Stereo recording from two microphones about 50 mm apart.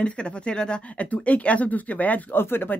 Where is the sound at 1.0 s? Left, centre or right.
Left.